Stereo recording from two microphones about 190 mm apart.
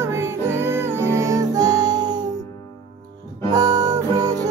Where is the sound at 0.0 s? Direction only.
15° right (ahead or behind).